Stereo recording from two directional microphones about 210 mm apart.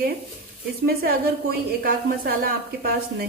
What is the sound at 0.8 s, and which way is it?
A woman's voice, 45° right (ahead or behind).